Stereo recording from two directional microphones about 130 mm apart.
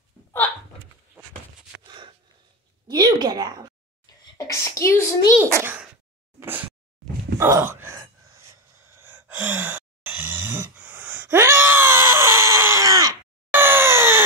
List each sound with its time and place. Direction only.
2.9 s speech: 30° right (ahead or behind)
4.0 s a sound: 25° left (ahead or behind)
5.4 s a child's voice: 15° right (ahead or behind)
7.3 s gasp: 20° right (ahead or behind)
9.0 s gasp: 15° right (ahead or behind)
13.5 s a sound: 15° right (ahead or behind)